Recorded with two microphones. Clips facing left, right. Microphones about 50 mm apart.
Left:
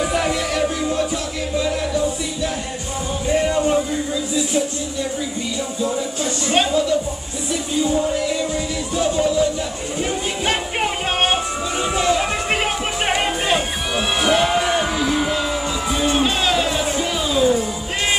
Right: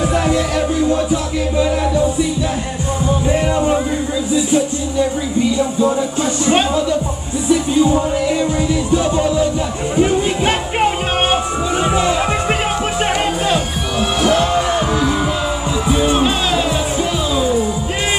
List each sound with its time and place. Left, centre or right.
0.0 s music: centre
3.3 s music: centre
6.4 s music: centre
9.9 s a sound: right
11.9 s a sound: centre
13.0 s music: centre
14.8 s music: centre